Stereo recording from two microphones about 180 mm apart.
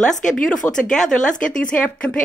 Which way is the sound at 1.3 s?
45° left (ahead or behind).